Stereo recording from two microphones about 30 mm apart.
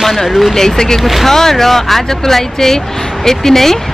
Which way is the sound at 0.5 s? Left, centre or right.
Centre.